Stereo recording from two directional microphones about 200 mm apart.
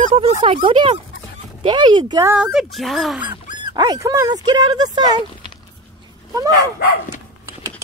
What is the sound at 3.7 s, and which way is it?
Speech, 20° right (ahead or behind).